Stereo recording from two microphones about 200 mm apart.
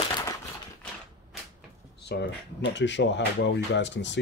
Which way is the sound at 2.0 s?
55° left (ahead or behind).